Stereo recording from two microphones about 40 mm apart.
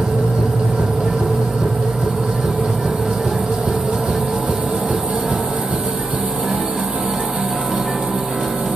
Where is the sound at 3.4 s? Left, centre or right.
Right.